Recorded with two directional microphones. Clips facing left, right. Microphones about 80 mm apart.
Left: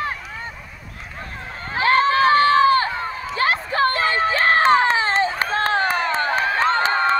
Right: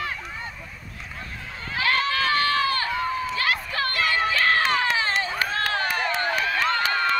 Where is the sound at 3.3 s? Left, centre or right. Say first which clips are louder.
Left 5 dB; left.